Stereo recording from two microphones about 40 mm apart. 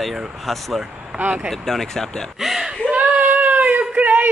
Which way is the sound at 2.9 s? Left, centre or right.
Right.